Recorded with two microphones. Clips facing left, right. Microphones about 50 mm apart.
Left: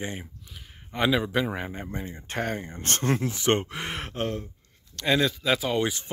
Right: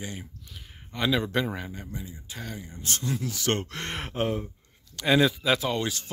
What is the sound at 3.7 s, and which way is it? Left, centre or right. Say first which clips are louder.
Speech: left 1 dB; centre.